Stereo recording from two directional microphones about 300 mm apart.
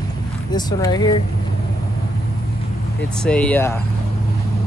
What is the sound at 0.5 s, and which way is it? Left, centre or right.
Speech, centre.